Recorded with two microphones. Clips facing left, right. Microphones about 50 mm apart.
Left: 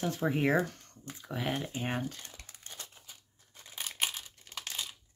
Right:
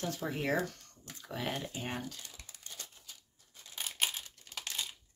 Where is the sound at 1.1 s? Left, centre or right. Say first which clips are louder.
Left 3 dB; centre; by 2.3 s left.